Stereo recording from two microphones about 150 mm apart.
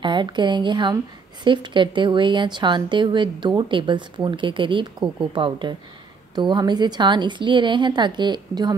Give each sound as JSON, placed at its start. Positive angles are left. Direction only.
{"t": 0.0, "sound": "speech", "side_deg": -30}